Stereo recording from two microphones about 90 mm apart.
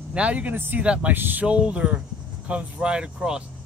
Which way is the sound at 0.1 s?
15° right (ahead or behind).